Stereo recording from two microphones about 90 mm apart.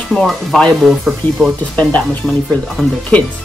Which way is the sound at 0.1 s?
5° left (ahead or behind).